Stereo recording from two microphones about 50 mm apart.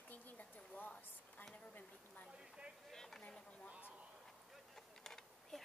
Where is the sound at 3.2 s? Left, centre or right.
Left.